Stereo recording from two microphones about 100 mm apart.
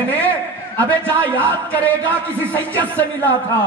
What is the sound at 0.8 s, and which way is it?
A man's voice, 15° left (ahead or behind).